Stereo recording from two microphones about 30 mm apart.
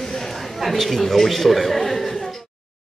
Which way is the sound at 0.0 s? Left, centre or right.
Centre.